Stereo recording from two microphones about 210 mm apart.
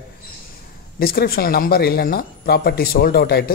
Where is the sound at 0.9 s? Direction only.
45° left (ahead or behind).